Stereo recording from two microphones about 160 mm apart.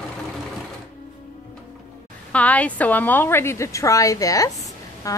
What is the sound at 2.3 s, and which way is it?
A woman's voice, 10° left (ahead or behind).